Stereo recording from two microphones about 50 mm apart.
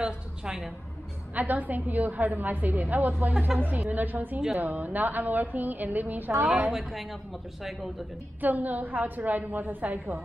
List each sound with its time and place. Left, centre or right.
1.3 s a woman's voice: right
6.4 s a woman's voice: right
6.7 s a woman's voice: centre
8.4 s a woman's voice: right